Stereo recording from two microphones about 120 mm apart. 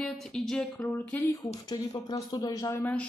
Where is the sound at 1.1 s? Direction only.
15° left (ahead or behind).